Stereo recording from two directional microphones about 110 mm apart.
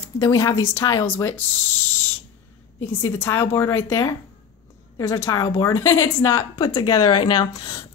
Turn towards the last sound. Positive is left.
turn(degrees=40)  # may be behind; listen again after turning